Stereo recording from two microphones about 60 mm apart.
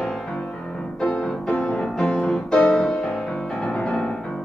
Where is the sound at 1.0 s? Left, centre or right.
Left.